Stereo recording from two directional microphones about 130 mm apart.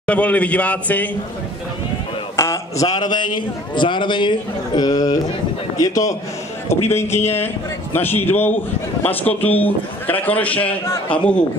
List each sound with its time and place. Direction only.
0.0 s a man's voice: 10° left (ahead or behind)
2.3 s a man's voice: 25° left (ahead or behind)